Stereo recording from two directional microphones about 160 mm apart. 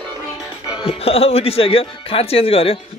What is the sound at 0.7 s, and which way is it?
Speech, 35° left (ahead or behind).